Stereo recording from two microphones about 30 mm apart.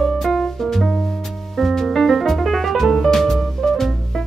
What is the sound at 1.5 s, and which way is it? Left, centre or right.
Music, centre.